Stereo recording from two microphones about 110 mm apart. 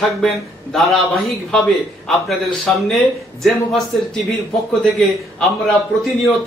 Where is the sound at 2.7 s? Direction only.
10° left (ahead or behind).